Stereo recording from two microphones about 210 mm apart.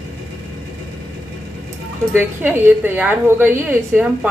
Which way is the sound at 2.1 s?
10° right (ahead or behind).